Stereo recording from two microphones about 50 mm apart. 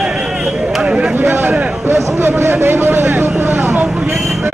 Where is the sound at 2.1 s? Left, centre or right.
Right.